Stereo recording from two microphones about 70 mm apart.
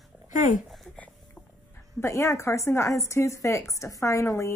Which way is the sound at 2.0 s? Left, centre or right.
Left.